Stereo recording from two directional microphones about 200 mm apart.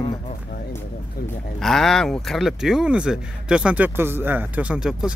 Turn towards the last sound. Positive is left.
turn(degrees=-5)  # may be behind; listen again after turning